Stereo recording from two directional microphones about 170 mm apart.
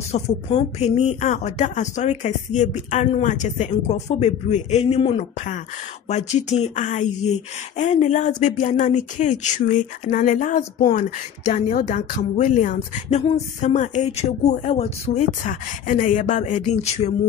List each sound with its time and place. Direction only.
0.1 s speech: 40° left (ahead or behind)